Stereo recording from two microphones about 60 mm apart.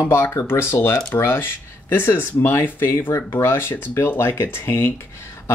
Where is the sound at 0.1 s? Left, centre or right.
Left.